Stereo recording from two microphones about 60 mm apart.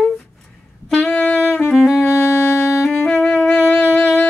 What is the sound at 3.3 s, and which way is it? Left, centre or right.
Wind instrument, centre.